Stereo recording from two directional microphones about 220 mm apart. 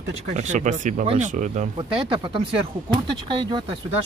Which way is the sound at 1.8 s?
20° right (ahead or behind).